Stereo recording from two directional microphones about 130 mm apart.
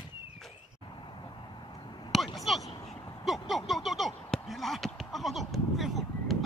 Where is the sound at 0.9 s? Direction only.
35° left (ahead or behind).